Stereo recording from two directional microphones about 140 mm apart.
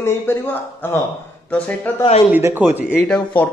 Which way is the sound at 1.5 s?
10° left (ahead or behind).